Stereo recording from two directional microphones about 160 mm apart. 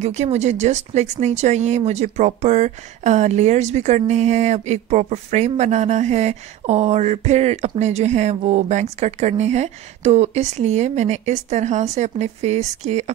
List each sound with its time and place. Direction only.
0.0 s speech: 45° right (ahead or behind)